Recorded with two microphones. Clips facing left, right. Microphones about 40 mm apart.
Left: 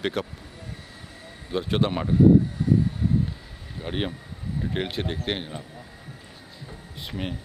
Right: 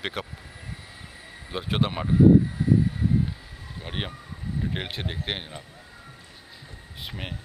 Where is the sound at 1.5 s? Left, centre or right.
Centre.